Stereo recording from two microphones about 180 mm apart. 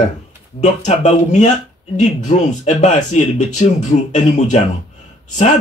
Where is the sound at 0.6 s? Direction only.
40° left (ahead or behind).